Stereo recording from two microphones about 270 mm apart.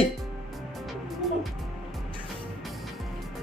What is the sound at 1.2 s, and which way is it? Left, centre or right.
Music, centre.